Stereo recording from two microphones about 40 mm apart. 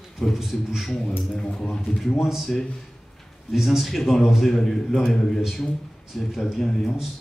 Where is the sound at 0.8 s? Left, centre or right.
Centre.